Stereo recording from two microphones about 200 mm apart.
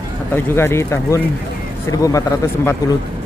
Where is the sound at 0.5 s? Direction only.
10° left (ahead or behind).